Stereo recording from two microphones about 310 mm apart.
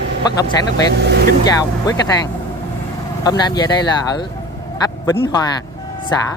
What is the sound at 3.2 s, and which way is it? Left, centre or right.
Speech, centre.